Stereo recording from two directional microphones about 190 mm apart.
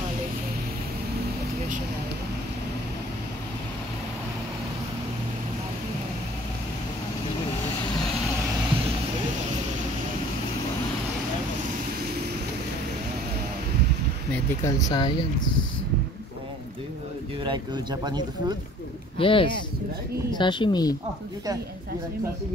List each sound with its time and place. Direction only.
14.3 s speech: 15° left (ahead or behind)
17.4 s speech: 25° right (ahead or behind)
19.1 s speech: 25° left (ahead or behind)